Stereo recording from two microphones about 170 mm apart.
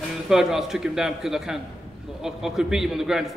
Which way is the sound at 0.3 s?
5° right (ahead or behind).